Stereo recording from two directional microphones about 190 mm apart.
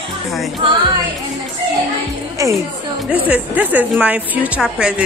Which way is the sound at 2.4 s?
15° right (ahead or behind).